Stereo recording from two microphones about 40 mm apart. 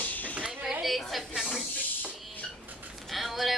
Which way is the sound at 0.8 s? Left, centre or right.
Centre.